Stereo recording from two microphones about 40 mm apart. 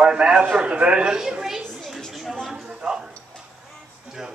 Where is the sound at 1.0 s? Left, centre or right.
Centre.